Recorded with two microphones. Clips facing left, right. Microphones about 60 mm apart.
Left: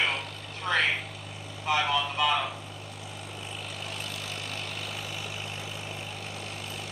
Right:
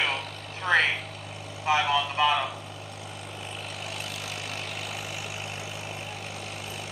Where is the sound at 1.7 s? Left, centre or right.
Centre.